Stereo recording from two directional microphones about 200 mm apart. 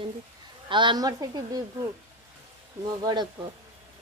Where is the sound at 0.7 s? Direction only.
25° right (ahead or behind).